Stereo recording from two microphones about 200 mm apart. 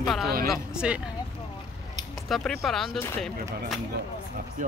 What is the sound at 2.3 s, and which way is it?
Speech, centre (ahead or behind).